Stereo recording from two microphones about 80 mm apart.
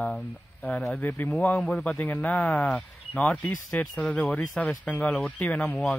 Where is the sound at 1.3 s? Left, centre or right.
Centre.